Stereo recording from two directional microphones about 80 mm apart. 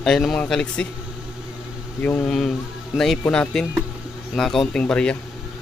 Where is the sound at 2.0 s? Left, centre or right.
Left.